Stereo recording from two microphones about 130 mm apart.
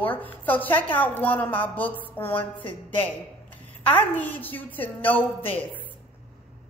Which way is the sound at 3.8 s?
15° left (ahead or behind).